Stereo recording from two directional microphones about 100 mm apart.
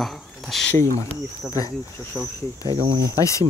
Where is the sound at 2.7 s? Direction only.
65° right (ahead or behind).